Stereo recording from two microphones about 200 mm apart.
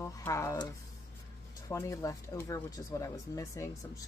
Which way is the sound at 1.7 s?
15° left (ahead or behind).